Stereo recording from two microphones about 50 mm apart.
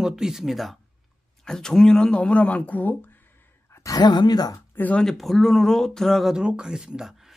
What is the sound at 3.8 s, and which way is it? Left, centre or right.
Speech, left.